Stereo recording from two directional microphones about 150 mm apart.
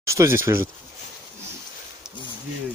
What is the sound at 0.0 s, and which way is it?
Speech, 20° right (ahead or behind).